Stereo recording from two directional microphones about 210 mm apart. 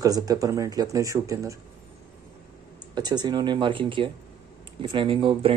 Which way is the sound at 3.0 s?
20° right (ahead or behind).